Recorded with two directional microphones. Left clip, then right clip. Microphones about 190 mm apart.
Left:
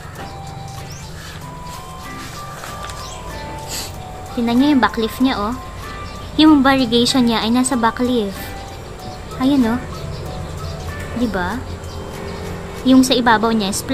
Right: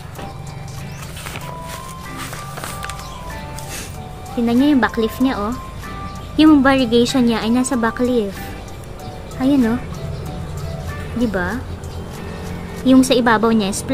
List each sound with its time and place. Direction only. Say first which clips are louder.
4.5 s a woman's voice: left 1 dB; 15° right (ahead or behind)
9.4 s a woman's voice: even; 15° right (ahead or behind)
11.3 s a woman's voice: left 1 dB; 15° right (ahead or behind)
12.8 s a woman's voice: even; 20° right (ahead or behind)